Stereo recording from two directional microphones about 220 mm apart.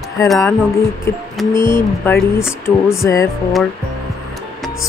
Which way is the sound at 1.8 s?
10° left (ahead or behind).